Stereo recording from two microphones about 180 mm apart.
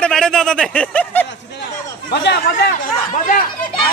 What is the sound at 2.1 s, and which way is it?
Speech, 70° left (ahead or behind).